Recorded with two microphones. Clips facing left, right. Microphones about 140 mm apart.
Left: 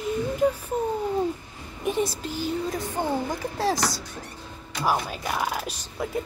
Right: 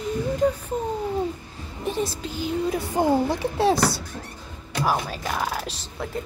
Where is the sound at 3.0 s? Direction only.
35° right (ahead or behind).